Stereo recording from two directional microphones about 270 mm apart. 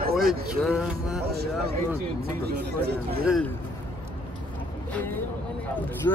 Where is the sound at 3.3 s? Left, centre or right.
Centre.